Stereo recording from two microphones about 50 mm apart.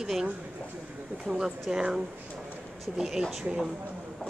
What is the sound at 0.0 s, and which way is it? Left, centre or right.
Speech, centre.